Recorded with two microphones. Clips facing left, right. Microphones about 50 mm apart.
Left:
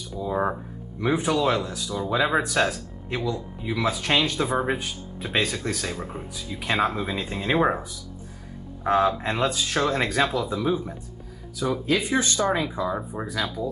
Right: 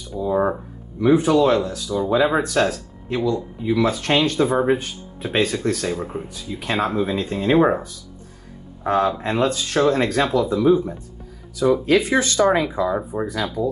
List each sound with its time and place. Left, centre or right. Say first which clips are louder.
0.2 s a sound: right 5 dB; centre
1.0 s speech: right 7 dB; centre
5.9 s speech: right 5 dB; centre
6.6 s speech: right 3 dB; centre
11.8 s speech: right 6 dB; right
12.8 s speech: right 6 dB; centre